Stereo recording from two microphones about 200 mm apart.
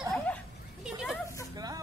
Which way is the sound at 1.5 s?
20° right (ahead or behind).